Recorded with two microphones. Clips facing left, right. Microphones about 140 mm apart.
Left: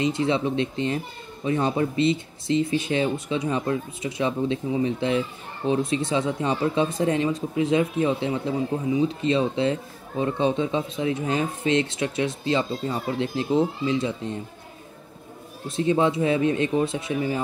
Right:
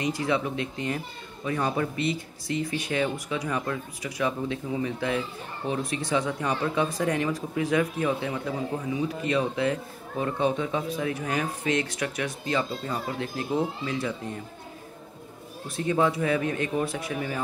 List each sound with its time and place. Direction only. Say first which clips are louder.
0.0 s speech: left 4 dB; 25° left (ahead or behind)
15.7 s speech: left 3 dB; 20° left (ahead or behind)